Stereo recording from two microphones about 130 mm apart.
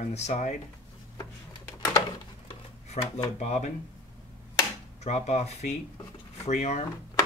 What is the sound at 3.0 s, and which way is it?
Speech, 55° left (ahead or behind).